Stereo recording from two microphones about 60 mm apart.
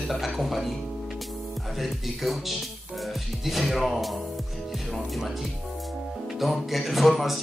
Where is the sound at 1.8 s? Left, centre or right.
Centre.